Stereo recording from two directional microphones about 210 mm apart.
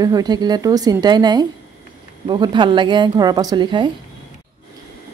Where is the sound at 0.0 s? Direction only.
20° right (ahead or behind).